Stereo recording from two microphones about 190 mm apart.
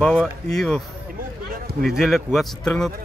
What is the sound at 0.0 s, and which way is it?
A man's voice, 5° left (ahead or behind).